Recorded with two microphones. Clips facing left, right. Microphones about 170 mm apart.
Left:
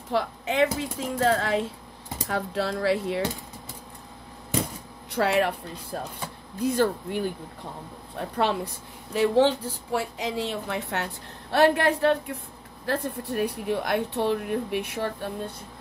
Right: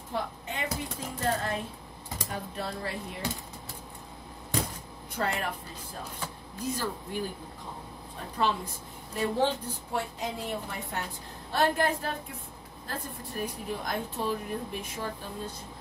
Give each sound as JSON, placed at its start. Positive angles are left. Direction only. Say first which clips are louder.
{"t": 0.1, "sound": "speech", "louder": "left 8 dB", "side_deg": 90}
{"t": 5.1, "sound": "speech", "louder": "left 9 dB", "side_deg": 75}
{"t": 6.6, "sound": "speech", "louder": "left 10 dB", "side_deg": 65}
{"t": 8.4, "sound": "a woman's voice", "louder": "left 3 dB", "side_deg": 70}